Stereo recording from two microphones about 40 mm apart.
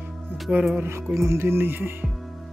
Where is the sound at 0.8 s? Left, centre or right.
Right.